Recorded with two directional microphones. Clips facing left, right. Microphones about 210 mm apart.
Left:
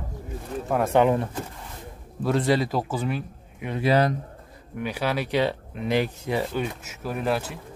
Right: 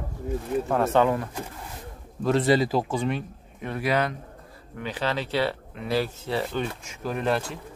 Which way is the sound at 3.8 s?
30° left (ahead or behind).